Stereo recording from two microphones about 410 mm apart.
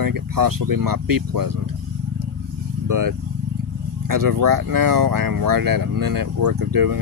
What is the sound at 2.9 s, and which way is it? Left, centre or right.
Speech, right.